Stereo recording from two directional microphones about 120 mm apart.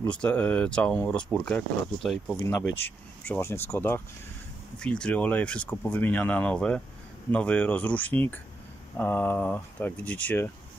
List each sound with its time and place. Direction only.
0.0 s speech: 10° left (ahead or behind)
4.7 s speech: 10° left (ahead or behind)